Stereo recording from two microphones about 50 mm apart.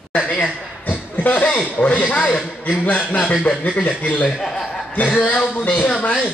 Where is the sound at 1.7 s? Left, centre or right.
Left.